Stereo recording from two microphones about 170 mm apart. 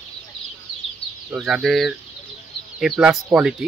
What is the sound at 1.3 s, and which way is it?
Speech, centre (ahead or behind).